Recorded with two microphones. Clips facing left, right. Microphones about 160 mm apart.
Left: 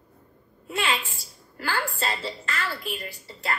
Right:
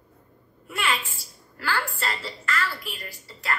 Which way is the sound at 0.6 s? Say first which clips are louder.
Left 1 dB; 30° left (ahead or behind).